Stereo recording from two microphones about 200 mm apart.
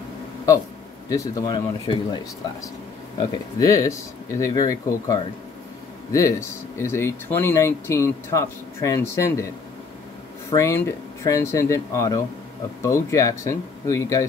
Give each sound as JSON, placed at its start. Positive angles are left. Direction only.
{"t": 1.0, "sound": "speech", "side_deg": 15}
{"t": 3.2, "sound": "speech", "side_deg": 15}
{"t": 6.8, "sound": "speech", "side_deg": 15}
{"t": 10.5, "sound": "speech", "side_deg": 15}